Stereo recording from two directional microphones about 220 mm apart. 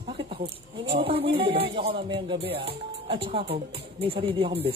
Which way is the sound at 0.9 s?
25° right (ahead or behind).